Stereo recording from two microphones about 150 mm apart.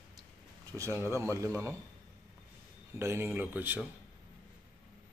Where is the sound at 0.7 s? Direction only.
20° right (ahead or behind).